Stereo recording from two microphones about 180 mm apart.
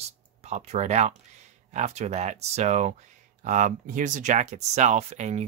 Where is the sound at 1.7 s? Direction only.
40° right (ahead or behind).